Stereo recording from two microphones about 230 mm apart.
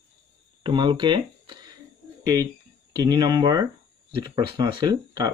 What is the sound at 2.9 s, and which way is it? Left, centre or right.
Speech, centre.